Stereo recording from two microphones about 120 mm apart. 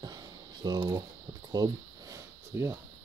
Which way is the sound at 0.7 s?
35° right (ahead or behind).